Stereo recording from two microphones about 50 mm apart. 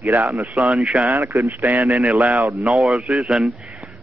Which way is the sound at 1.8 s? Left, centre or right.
Centre.